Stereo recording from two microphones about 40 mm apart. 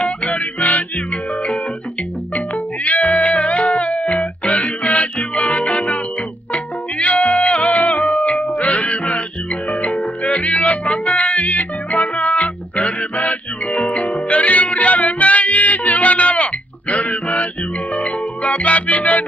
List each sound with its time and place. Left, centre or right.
0.0 s music: left